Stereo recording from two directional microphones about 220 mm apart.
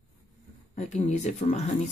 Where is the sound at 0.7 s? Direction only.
30° left (ahead or behind).